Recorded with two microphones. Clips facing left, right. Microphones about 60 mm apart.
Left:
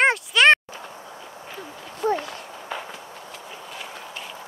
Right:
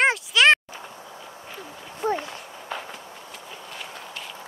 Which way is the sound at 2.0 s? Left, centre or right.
Right.